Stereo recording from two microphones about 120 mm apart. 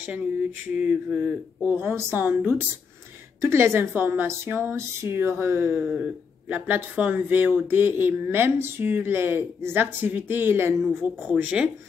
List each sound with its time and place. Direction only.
0.7 s a woman's voice: 10° right (ahead or behind)